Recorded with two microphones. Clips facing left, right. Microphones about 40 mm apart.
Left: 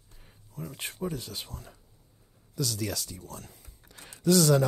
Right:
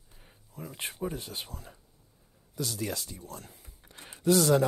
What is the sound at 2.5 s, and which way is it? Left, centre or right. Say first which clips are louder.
Speech: left 1 dB; centre.